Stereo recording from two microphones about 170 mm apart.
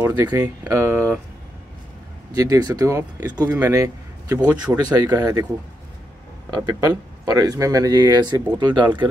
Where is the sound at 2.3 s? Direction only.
20° right (ahead or behind).